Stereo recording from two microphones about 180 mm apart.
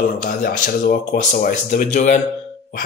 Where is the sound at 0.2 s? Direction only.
50° left (ahead or behind).